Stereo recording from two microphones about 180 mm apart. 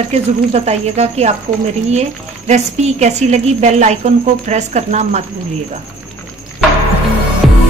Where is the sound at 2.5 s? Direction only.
40° right (ahead or behind).